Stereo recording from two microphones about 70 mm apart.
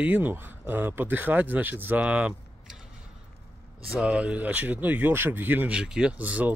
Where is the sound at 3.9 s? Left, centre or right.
Centre.